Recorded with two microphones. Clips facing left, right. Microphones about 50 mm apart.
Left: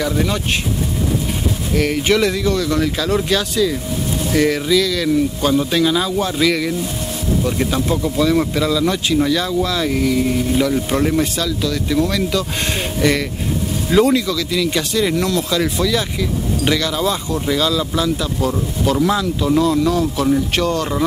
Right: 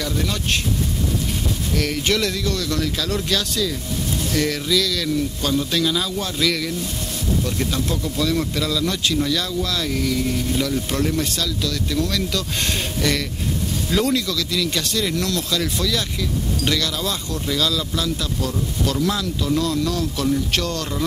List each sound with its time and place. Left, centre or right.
0.0 s speech: centre
1.7 s speech: centre
13.8 s speech: centre